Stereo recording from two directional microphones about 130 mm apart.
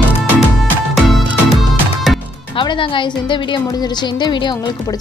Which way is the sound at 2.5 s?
40° left (ahead or behind).